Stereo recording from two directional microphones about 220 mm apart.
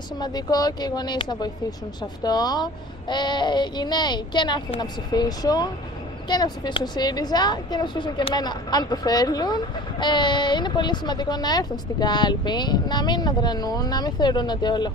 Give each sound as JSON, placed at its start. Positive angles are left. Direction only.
{"t": 0.2, "sound": "a woman's voice", "side_deg": 15}